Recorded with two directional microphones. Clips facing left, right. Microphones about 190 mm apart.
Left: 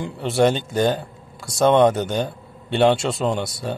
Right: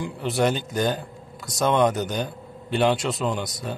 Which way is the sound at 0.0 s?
25° left (ahead or behind).